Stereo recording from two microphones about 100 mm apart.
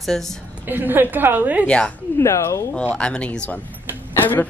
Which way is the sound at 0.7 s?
20° right (ahead or behind).